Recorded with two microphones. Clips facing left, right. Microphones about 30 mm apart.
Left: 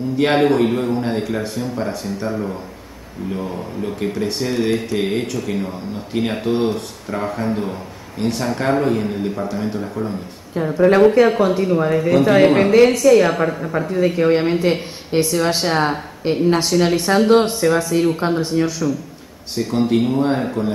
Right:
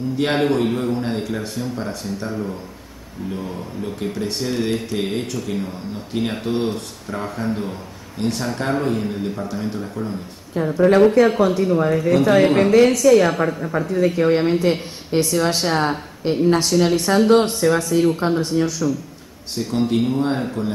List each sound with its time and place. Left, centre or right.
0.2 s a man's voice: centre
12.7 s a woman's voice: left
13.0 s a man's voice: centre